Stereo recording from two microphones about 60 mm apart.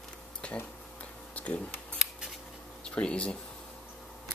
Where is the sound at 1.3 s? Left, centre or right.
Left.